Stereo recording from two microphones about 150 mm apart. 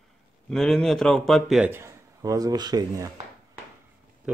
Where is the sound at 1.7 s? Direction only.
15° right (ahead or behind).